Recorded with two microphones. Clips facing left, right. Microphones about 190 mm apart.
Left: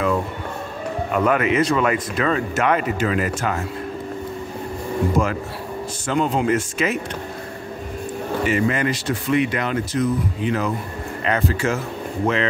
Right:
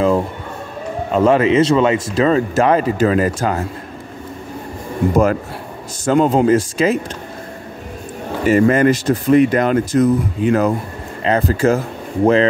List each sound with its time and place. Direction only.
1.1 s speech: 30° right (ahead or behind)
5.1 s speech: 45° right (ahead or behind)
8.5 s speech: 45° right (ahead or behind)